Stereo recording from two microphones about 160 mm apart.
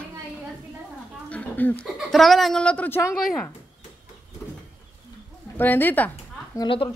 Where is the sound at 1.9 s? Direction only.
Centre (ahead or behind).